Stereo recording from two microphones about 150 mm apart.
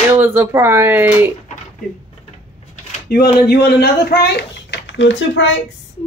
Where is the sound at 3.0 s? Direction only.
90° left.